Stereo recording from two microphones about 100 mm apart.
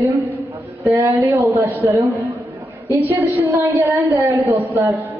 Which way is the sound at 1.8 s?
30° right (ahead or behind).